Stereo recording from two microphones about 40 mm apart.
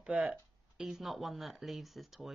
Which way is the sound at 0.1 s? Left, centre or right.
Right.